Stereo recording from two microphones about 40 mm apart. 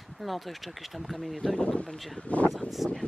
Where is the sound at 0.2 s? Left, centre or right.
Centre.